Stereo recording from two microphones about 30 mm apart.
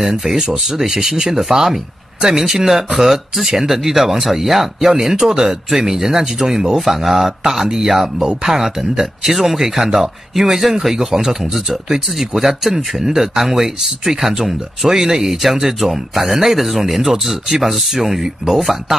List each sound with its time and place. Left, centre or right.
0.2 s speech: centre